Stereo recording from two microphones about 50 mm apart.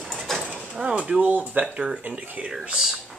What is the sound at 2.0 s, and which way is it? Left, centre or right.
Speech, right.